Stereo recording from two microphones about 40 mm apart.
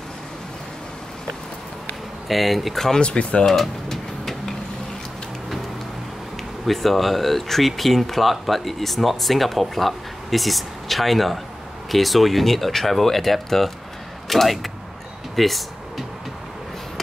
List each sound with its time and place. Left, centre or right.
2.2 s speech: centre
3.0 s speech: left
3.4 s a sound: centre
6.6 s speech: centre
15.3 s vehicle: centre